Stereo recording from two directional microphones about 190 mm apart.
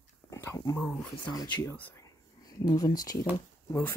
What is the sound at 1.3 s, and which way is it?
Speech, 20° left (ahead or behind).